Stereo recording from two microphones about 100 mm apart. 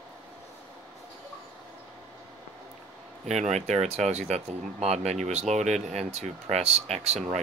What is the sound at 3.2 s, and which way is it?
Speech, 90° right.